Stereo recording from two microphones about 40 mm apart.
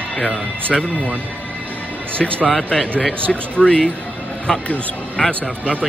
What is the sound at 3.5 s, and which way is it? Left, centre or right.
Speech, left.